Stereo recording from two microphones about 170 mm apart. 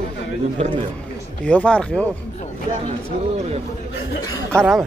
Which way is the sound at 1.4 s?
5° left (ahead or behind).